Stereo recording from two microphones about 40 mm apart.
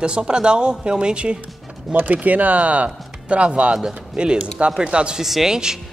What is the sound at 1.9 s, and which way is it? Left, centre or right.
Speech, right.